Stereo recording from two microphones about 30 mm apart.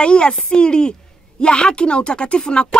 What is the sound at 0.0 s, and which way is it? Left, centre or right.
Speech, left.